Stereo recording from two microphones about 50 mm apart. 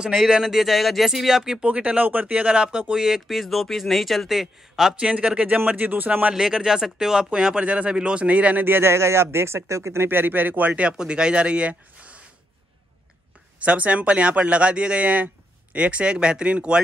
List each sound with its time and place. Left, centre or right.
0.2 s a man's voice: centre
1.6 s speech: right
3.3 s a man's voice: centre
4.9 s speech: right
5.6 s speech: right
6.3 s speech: centre; by 8.6 s right
8.6 s speech: right
8.9 s speech: right
10.0 s speech: right
10.7 s speech: centre
13.6 s speech: right